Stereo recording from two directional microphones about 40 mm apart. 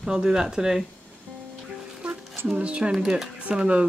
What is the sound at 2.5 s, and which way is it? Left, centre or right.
Speech, right.